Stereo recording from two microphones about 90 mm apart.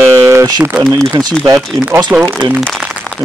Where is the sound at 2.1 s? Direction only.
40° right (ahead or behind).